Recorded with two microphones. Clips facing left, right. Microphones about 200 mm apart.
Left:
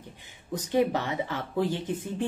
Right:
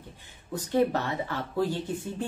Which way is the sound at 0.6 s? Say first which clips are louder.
Even; 15° left (ahead or behind).